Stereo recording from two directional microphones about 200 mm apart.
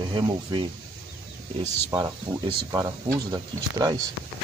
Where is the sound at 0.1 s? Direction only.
25° right (ahead or behind).